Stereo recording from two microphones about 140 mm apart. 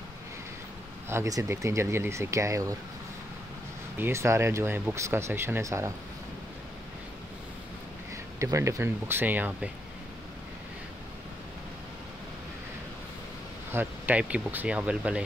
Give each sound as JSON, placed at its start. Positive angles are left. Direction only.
{"t": 1.0, "sound": "speech", "side_deg": -20}
{"t": 4.0, "sound": "speech", "side_deg": -20}
{"t": 8.4, "sound": "speech", "side_deg": -20}
{"t": 13.7, "sound": "speech", "side_deg": -15}